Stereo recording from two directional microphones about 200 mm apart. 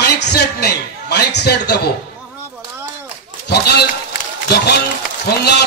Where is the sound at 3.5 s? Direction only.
55° left (ahead or behind).